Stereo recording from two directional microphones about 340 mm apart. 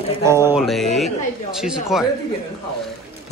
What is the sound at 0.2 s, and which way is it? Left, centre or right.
Speech, centre.